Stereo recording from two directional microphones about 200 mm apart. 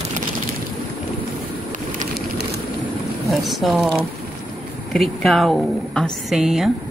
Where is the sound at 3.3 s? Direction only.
Centre (ahead or behind).